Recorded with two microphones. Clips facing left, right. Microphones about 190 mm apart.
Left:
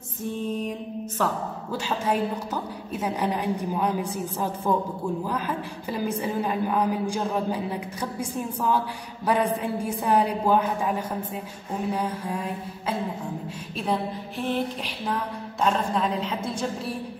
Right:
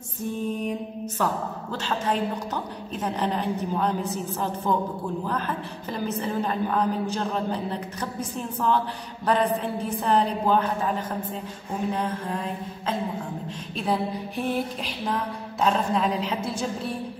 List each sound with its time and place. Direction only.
1.1 s a woman's voice: 5° left (ahead or behind)
15.6 s a woman's voice: centre (ahead or behind)